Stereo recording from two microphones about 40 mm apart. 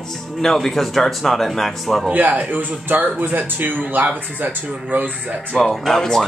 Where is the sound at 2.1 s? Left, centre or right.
Right.